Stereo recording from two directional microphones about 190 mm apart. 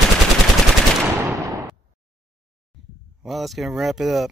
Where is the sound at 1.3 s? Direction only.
15° right (ahead or behind).